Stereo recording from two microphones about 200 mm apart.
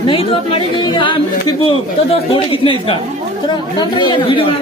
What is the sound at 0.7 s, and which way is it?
Speech, 25° left (ahead or behind).